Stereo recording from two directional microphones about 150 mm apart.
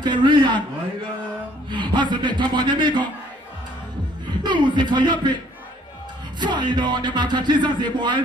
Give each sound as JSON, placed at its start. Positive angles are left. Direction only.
{"t": 0.0, "sound": "speech", "side_deg": -30}
{"t": 1.7, "sound": "speech", "side_deg": -30}
{"t": 4.3, "sound": "speech", "side_deg": -30}
{"t": 6.4, "sound": "speech", "side_deg": -30}